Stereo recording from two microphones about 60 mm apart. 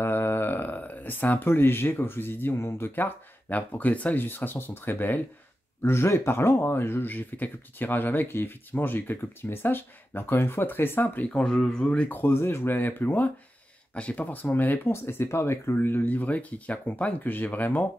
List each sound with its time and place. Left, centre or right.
0.0 s a sound: left
2.9 s speech: left
5.8 s speech: left
11.2 s speech: centre
11.8 s speech: centre
12.2 s speech: left
14.9 s speech: left